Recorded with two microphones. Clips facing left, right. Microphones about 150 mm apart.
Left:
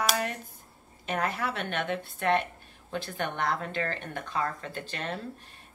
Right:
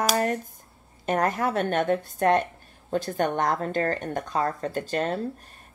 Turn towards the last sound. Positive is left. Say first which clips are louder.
# right 9 dB
turn(degrees=-40)  # may be behind; listen again after turning